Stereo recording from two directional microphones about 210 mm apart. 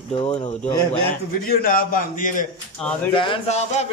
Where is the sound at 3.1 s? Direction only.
25° left (ahead or behind).